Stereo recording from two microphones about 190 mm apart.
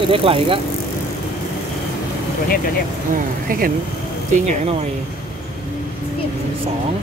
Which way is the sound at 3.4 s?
50° right (ahead or behind).